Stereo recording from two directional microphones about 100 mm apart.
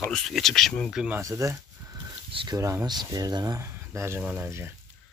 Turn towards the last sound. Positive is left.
turn(degrees=-15)  # may be behind; listen again after turning